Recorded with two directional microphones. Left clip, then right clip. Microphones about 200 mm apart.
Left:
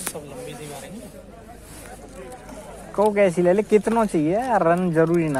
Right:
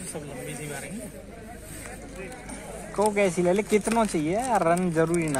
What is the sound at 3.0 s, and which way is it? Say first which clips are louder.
Speech: left 5 dB; 40° left (ahead or behind).